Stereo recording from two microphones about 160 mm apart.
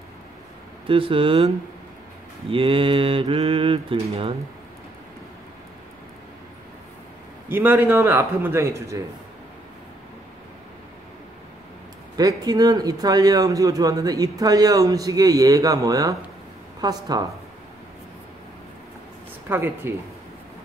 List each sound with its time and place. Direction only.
0.8 s mantra: 35° right (ahead or behind)
2.5 s mantra: 35° right (ahead or behind)
7.4 s a man's voice: 10° right (ahead or behind)
12.2 s speech: 25° right (ahead or behind)
19.5 s a man's voice: 15° right (ahead or behind)